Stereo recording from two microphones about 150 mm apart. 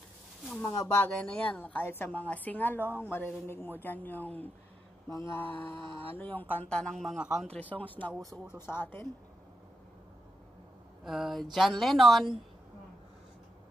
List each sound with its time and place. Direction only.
0.7 s speech: 25° left (ahead or behind)
1.0 s speech: 10° left (ahead or behind)
7.5 s speech: 10° left (ahead or behind)
8.1 s speech: 5° right (ahead or behind)
8.5 s speech: 15° left (ahead or behind)
11.1 s speech: centre (ahead or behind)